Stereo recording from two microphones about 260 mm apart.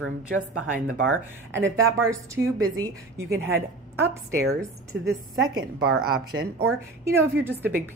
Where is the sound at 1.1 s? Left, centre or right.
Centre.